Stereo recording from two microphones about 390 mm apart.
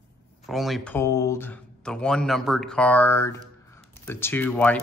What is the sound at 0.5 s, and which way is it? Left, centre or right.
Speech, centre.